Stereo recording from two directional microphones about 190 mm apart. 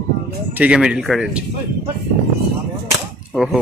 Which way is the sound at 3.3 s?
5° right (ahead or behind).